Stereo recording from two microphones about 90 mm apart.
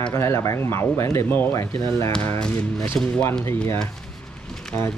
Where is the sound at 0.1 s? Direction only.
35° left (ahead or behind).